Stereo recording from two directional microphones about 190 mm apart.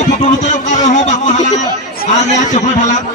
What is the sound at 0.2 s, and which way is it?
Speech, 40° left (ahead or behind).